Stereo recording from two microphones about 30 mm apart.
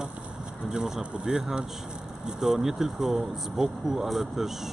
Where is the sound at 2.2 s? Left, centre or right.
Centre.